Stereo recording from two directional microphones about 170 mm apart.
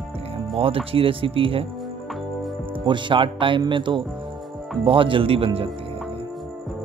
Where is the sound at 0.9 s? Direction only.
30° right (ahead or behind).